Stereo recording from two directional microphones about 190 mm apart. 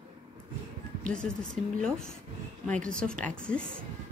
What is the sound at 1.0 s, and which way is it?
Speech, 5° left (ahead or behind).